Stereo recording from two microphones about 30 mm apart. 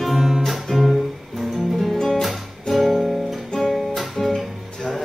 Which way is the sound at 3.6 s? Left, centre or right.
Centre.